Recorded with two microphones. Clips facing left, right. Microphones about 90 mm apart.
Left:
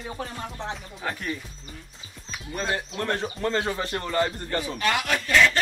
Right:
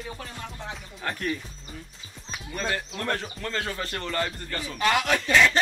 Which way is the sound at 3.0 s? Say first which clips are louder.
Left 3 dB; 25° left (ahead or behind).